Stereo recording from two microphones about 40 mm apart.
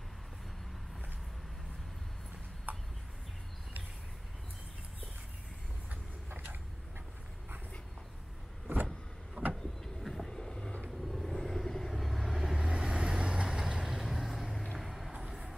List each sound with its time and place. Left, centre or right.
2.7 s a sound: right
8.7 s vehicle: right
9.4 s vehicle: right
9.8 s train: centre
11.0 s vehicle: centre
12.5 s vehicle: right
14.6 s music: centre